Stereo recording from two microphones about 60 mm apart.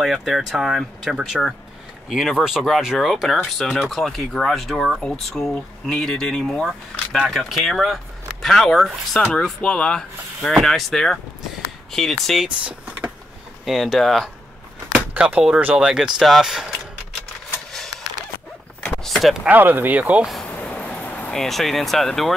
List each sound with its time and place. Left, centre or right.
0.0 s speech: centre
5.0 s speech: centre
13.7 s speech: centre
15.0 s speech: centre
19.0 s a sound: centre
19.5 s speech: right
20.7 s a sound: left
21.3 s speech: centre